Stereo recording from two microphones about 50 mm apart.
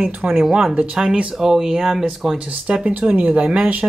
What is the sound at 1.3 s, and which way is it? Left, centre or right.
Speech, centre.